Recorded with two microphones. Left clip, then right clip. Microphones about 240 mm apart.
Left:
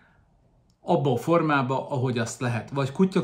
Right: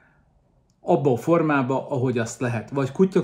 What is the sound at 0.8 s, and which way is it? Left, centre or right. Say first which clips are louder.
Speech: right 3 dB; centre.